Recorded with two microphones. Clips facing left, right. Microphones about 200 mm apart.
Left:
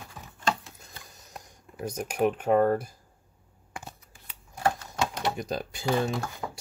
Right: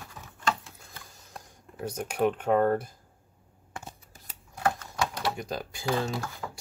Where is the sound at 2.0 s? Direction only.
10° left (ahead or behind).